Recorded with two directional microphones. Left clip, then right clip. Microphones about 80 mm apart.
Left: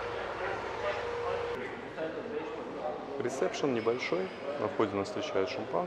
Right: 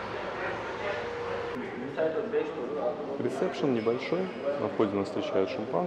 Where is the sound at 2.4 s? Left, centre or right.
Right.